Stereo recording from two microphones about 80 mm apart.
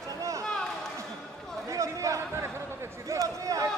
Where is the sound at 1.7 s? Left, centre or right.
Right.